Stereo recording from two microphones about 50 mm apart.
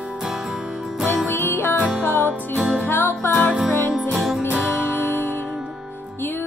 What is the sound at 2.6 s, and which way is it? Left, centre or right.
Music, centre.